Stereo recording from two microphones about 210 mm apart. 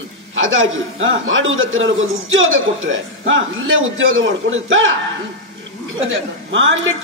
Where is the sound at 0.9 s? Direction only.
65° right (ahead or behind).